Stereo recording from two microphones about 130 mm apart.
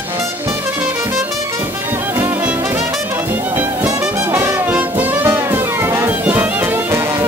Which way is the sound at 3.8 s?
15° right (ahead or behind).